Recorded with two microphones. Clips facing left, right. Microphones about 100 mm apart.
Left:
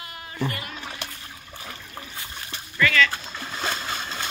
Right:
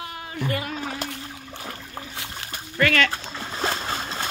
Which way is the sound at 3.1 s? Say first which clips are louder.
Right 2 dB; 30° right (ahead or behind).